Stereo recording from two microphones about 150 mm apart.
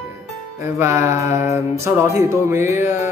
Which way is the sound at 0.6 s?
20° right (ahead or behind).